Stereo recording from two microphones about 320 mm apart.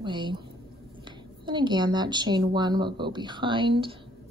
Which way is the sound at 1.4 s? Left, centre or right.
Centre.